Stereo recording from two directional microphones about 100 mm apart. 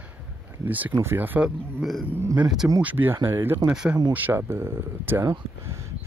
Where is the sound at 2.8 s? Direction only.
20° right (ahead or behind).